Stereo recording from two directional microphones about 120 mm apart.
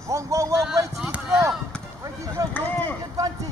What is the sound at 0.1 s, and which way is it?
Speech, 25° right (ahead or behind).